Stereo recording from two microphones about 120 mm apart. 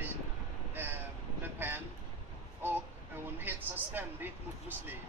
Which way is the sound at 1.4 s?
15° right (ahead or behind).